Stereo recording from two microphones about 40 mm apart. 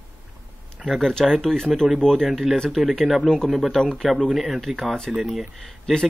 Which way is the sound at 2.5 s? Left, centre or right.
Centre.